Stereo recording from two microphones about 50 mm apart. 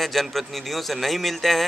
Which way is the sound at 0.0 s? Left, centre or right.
Centre.